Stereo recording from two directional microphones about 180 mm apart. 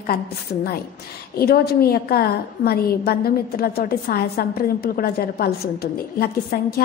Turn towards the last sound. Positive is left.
turn(degrees=60)  # may be behind; listen again after turning